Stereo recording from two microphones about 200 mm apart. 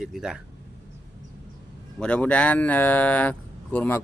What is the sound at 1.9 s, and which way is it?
Speech, 5° left (ahead or behind).